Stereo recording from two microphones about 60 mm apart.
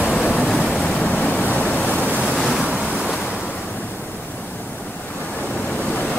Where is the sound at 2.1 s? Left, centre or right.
Right.